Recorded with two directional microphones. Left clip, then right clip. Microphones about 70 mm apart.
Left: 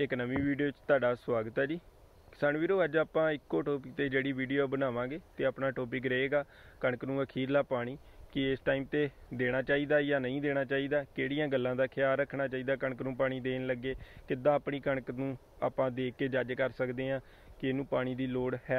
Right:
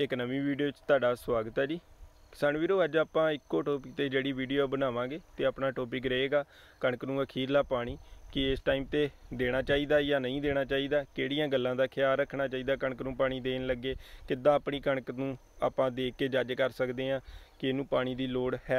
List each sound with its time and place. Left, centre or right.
0.0 s speech: centre